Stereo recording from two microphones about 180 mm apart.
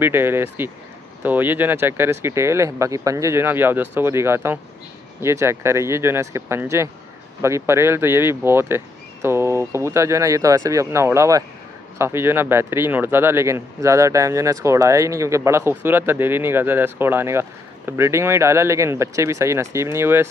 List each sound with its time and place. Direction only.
0.0 s speech: 10° right (ahead or behind)